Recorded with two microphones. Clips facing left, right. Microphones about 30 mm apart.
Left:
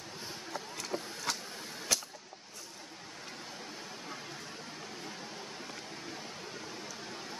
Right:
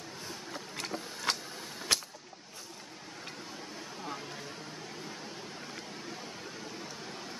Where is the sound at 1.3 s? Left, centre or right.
Right.